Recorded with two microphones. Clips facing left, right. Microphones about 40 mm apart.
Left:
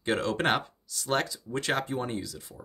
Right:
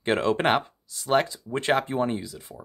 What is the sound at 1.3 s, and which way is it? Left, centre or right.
Speech, right.